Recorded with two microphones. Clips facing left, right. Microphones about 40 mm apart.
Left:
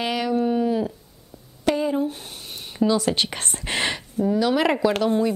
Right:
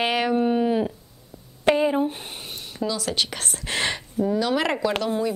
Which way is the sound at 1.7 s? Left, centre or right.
Right.